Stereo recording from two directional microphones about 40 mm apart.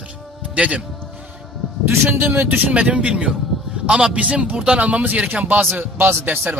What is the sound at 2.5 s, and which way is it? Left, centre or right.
A man's voice, right.